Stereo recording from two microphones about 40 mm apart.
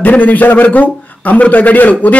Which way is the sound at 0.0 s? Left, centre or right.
Left.